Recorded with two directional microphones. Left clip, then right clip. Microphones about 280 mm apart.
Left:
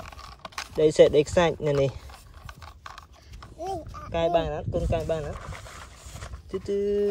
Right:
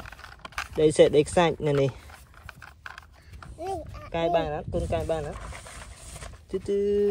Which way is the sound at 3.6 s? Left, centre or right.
Centre.